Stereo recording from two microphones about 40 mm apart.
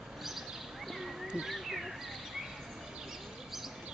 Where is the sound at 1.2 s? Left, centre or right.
Centre.